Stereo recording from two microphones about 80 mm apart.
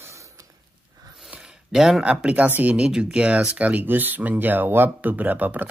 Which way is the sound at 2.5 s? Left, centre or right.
Centre.